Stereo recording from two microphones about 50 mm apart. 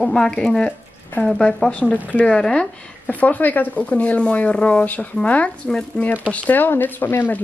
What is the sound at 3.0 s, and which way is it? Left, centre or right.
Speech, left.